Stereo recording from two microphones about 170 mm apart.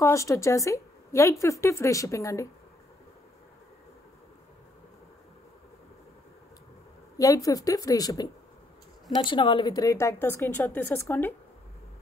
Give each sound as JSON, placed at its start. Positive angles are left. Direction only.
{"t": 0.0, "sound": "a woman's voice", "side_deg": 20}
{"t": 7.2, "sound": "a woman's voice", "side_deg": 20}